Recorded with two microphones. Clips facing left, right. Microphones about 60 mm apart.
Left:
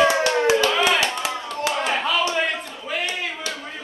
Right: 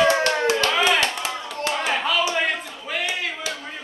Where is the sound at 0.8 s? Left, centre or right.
Centre.